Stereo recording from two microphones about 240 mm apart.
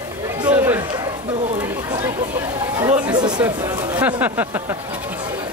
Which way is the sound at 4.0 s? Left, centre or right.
Centre.